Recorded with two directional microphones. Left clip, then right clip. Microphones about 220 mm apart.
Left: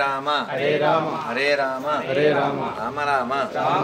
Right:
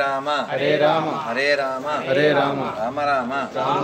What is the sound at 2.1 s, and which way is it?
Speech, 40° right (ahead or behind).